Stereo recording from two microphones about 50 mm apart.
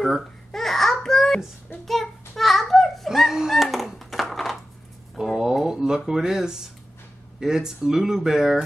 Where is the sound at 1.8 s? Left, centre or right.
Centre.